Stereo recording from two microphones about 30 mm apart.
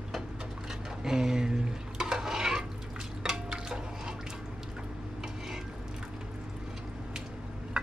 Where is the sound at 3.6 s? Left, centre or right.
Right.